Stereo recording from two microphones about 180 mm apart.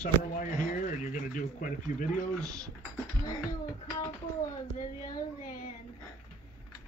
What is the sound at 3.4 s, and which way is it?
Music, 20° left (ahead or behind).